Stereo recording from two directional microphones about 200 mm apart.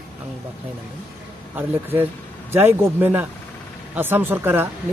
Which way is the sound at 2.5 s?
10° right (ahead or behind).